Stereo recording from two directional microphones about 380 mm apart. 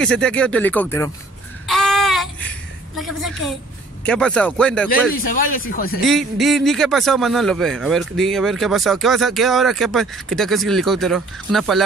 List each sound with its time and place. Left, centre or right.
0.0 s a man's voice: centre
1.7 s a sound: centre
3.0 s a man's voice: centre
5.1 s speech: left
6.0 s a man's voice: centre